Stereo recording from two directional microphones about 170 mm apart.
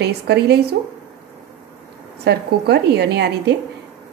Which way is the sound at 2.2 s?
75° right (ahead or behind).